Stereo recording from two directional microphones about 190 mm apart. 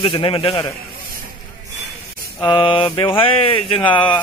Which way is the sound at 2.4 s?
25° left (ahead or behind).